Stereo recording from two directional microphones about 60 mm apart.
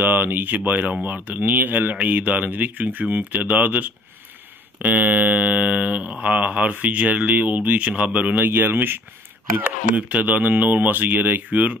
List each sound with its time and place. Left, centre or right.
0.0 s speech: right
8.5 s speech: right
9.6 s speech: right